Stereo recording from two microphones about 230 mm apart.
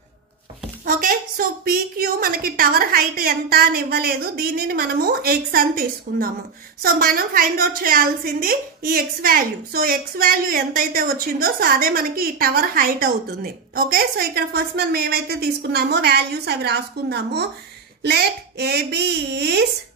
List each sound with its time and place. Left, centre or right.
0.8 s a woman's voice: right